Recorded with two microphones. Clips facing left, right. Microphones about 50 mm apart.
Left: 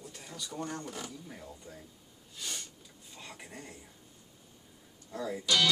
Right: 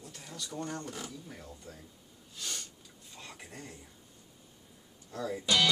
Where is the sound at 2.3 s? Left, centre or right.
Centre.